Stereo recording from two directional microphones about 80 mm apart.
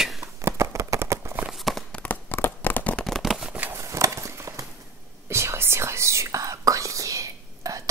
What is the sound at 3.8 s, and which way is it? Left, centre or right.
Horse, right.